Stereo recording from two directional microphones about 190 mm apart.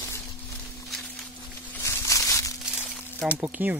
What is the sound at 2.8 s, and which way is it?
Crumpling, 5° left (ahead or behind).